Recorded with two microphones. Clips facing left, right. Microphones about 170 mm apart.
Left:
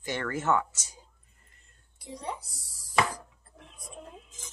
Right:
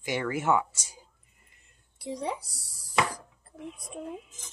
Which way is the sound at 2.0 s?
75° right (ahead or behind).